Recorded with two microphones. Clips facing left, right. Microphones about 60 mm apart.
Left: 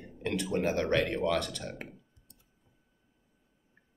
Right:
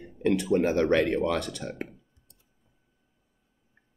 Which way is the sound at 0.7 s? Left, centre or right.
Right.